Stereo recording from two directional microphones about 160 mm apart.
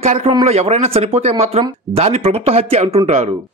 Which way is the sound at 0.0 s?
45° right (ahead or behind).